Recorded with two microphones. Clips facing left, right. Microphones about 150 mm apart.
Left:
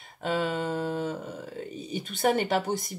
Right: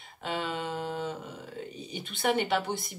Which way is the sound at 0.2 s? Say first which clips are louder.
Left 5 dB; 45° left (ahead or behind).